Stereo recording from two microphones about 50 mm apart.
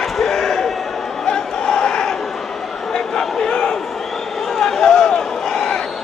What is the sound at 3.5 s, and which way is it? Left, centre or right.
Crowd, centre.